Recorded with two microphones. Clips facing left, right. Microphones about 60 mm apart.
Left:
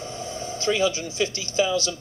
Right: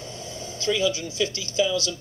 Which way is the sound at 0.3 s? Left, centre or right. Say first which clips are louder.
Left 1 dB; left.